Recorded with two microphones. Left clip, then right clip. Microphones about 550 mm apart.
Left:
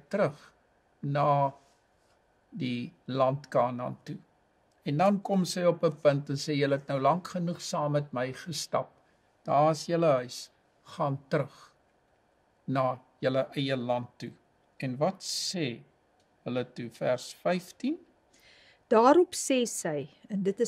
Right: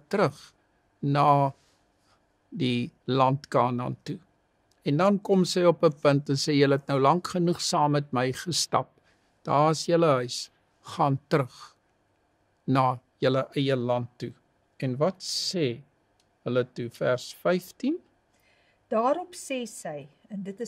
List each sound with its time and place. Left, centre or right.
0.1 s speech: right
2.6 s a man's voice: right
18.4 s a woman's voice: left